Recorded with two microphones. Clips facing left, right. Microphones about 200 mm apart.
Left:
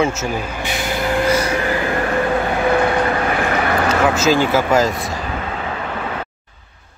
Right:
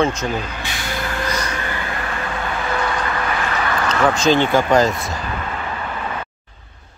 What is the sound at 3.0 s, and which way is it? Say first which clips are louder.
Vehicle: left 5 dB; 35° left (ahead or behind).